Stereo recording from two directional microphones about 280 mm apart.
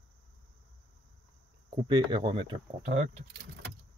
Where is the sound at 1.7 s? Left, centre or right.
Centre.